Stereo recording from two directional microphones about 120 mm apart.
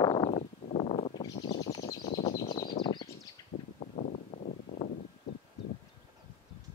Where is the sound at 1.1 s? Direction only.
35° left (ahead or behind).